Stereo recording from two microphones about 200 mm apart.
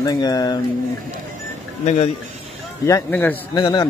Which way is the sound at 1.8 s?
30° left (ahead or behind).